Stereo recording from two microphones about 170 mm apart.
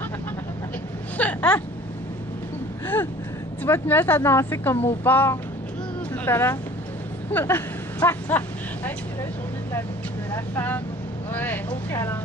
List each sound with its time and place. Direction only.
1.1 s speech: 5° left (ahead or behind)
3.6 s speech: 10° left (ahead or behind)
7.2 s vehicle: 15° left (ahead or behind)
10.3 s speech: 10° left (ahead or behind)